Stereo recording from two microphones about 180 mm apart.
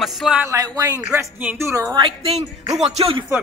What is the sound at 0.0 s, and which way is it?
Speech, 5° right (ahead or behind).